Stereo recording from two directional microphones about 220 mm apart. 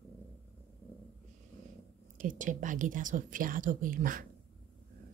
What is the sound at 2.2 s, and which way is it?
A woman's voice, 35° right (ahead or behind).